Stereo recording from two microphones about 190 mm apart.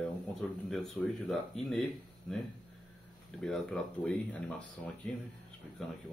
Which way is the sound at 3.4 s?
Centre (ahead or behind).